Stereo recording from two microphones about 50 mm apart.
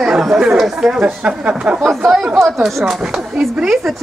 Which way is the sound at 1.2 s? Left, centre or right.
Right.